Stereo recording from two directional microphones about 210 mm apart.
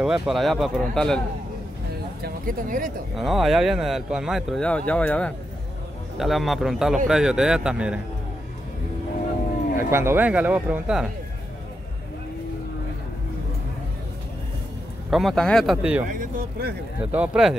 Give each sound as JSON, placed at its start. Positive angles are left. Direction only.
{"t": 0.0, "sound": "speech", "side_deg": 0}
{"t": 2.2, "sound": "speech", "side_deg": -40}
{"t": 3.2, "sound": "speech", "side_deg": 0}
{"t": 9.8, "sound": "speech", "side_deg": -10}
{"t": 15.0, "sound": "speech", "side_deg": 0}
{"t": 16.1, "sound": "speech", "side_deg": -40}
{"t": 17.1, "sound": "speech", "side_deg": -5}